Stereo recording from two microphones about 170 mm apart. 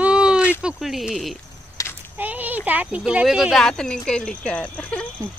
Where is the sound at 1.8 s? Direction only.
20° left (ahead or behind).